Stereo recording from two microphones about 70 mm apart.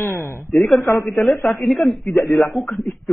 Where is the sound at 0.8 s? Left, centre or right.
Left.